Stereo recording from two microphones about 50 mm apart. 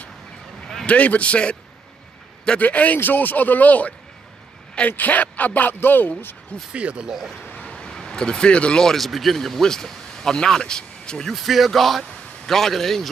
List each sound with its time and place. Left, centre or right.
0.8 s speech: left
2.6 s speech: left
6.7 s speech: right
7.5 s a sound: left
8.8 s speech: centre
11.3 s speech: centre